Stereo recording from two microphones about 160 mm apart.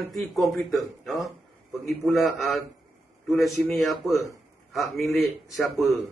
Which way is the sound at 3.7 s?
Centre (ahead or behind).